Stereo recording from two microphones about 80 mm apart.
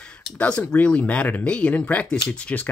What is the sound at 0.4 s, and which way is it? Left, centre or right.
Speech, centre.